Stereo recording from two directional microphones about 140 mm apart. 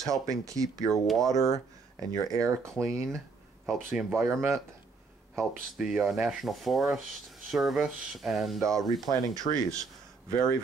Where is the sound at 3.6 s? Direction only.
Centre (ahead or behind).